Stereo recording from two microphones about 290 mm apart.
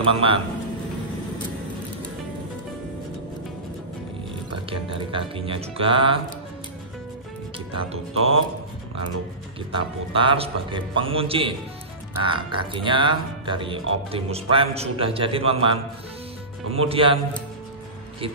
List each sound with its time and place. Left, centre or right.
0.0 s speech: centre
4.6 s speech: centre
7.9 s speech: centre
10.1 s speech: centre
16.7 s speech: centre